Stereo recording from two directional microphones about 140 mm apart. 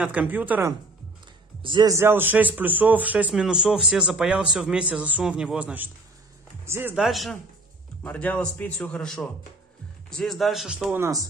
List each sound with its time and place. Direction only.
0.0 s speech: 10° right (ahead or behind)
1.6 s speech: 35° right (ahead or behind)
1.9 s speech: 20° right (ahead or behind)
7.0 s speech: centre (ahead or behind)
8.0 s a man's voice: 10° left (ahead or behind)